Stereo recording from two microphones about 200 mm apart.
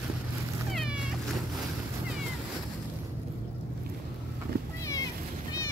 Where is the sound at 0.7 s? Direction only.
5° right (ahead or behind).